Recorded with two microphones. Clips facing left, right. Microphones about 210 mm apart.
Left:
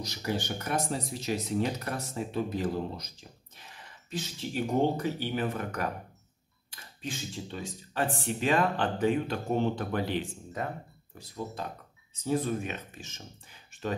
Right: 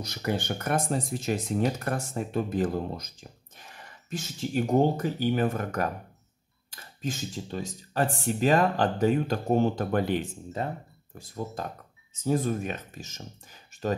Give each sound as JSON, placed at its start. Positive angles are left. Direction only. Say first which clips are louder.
{"t": 0.0, "sound": "speech", "louder": "right 3 dB", "side_deg": -55}
{"t": 10.6, "sound": "speech", "louder": "right 3 dB", "side_deg": -30}
{"t": 11.1, "sound": "speech", "louder": "right 2 dB", "side_deg": -45}